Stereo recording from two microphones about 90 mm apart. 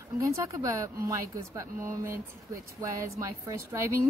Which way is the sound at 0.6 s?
40° right (ahead or behind).